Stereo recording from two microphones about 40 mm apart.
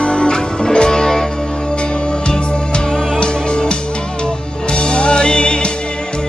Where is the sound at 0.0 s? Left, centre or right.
Left.